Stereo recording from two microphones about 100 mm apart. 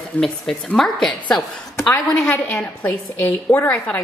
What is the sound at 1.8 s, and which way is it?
A woman's voice, 15° left (ahead or behind).